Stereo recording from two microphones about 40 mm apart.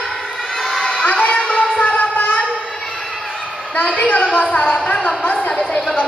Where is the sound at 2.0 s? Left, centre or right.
Left.